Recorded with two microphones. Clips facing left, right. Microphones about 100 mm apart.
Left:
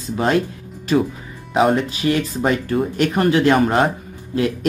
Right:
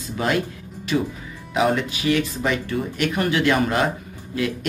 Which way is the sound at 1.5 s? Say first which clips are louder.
Left 4 dB; 35° left (ahead or behind).